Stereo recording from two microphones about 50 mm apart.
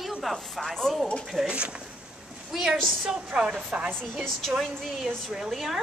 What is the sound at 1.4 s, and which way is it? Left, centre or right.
Speech, right.